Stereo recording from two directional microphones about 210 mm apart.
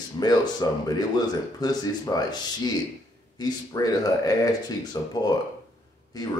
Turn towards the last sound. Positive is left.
turn(degrees=15)  # may be behind; listen again after turning